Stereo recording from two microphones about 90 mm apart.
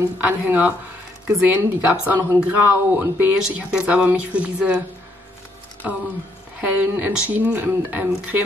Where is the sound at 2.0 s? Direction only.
20° right (ahead or behind).